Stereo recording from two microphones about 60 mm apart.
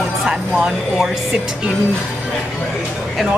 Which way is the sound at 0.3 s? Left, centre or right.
Centre.